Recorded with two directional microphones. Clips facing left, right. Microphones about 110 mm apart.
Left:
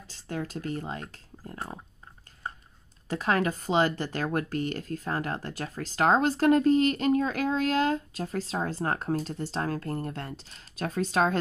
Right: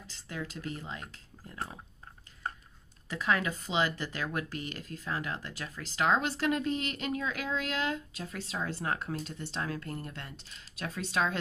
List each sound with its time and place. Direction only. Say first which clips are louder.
0.1 s speech: left 6 dB; 40° left (ahead or behind)
3.1 s speech: left 4 dB; 40° left (ahead or behind)